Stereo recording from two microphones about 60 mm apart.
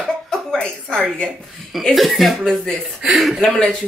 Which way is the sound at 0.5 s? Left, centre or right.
Centre.